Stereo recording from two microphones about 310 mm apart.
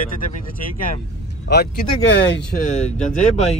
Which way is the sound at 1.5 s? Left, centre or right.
Left.